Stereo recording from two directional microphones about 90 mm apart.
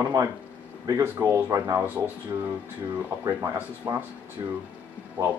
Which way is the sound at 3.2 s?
35° right (ahead or behind).